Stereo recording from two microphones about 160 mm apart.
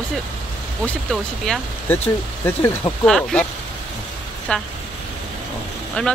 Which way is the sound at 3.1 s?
5° left (ahead or behind).